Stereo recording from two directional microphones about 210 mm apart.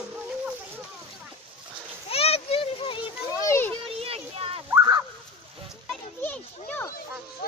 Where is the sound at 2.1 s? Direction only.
30° left (ahead or behind).